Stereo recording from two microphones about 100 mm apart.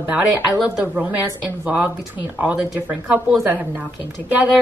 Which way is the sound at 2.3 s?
15° right (ahead or behind).